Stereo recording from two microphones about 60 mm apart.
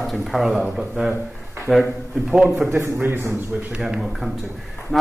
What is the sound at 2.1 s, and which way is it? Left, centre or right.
Speech, centre.